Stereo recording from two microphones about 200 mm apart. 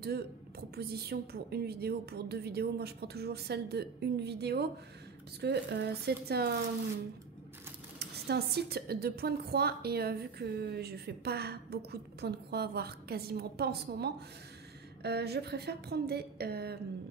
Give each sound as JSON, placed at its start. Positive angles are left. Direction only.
{"t": 0.0, "sound": "a woman's voice", "side_deg": -50}
{"t": 8.0, "sound": "a woman's voice", "side_deg": -50}